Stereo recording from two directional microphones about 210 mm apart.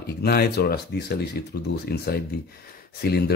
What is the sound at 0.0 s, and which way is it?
Speech, 50° left (ahead or behind).